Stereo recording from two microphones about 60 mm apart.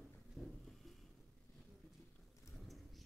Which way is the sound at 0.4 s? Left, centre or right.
Centre.